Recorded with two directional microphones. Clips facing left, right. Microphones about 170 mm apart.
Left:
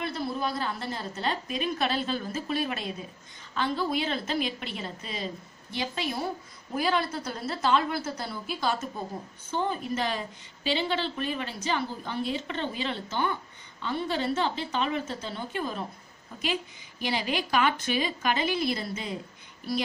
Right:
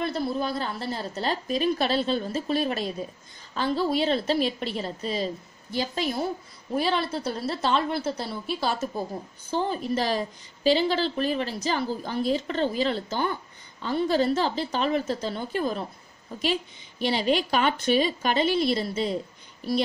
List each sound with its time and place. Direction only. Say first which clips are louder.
0.0 s a woman's voice: right 4 dB; 35° right (ahead or behind)
17.0 s a woman's voice: right 6 dB; 30° right (ahead or behind)